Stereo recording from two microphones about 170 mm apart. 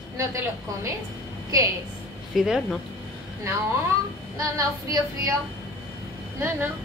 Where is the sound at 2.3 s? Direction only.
Centre (ahead or behind).